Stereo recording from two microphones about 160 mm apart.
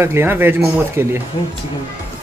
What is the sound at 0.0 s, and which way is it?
Speech, 15° right (ahead or behind).